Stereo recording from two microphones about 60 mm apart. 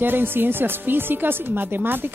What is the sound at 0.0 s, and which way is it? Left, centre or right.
Speech, right.